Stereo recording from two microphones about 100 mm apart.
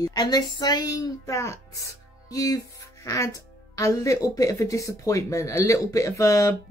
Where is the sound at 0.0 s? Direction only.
40° left (ahead or behind).